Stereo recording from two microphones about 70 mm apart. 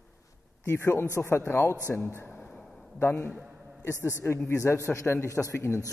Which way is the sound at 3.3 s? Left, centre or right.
Centre.